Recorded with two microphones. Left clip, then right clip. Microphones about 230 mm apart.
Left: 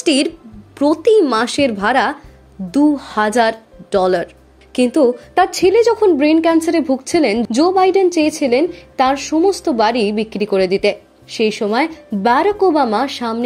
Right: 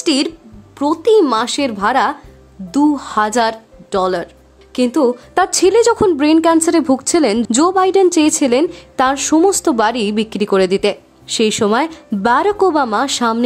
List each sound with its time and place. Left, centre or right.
0.0 s a woman's voice: centre
5.3 s a woman's voice: centre